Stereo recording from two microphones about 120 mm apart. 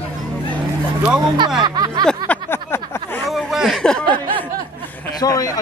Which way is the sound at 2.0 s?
15° left (ahead or behind).